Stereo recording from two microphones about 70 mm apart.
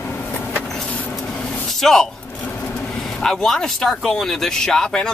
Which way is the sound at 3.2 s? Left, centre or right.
Centre.